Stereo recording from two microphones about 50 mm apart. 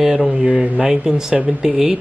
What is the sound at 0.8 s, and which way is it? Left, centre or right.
Speech, centre.